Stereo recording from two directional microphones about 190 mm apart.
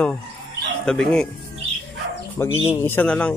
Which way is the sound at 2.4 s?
15° left (ahead or behind).